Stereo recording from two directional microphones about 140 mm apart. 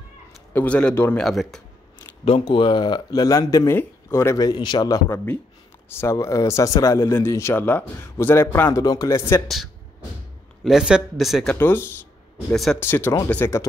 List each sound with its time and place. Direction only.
0.5 s a man's voice: 10° left (ahead or behind)
2.2 s speech: 40° left (ahead or behind)
5.1 s a man's voice: 10° left (ahead or behind)
10.6 s speech: 5° right (ahead or behind)
11.5 s a man's voice: 15° left (ahead or behind)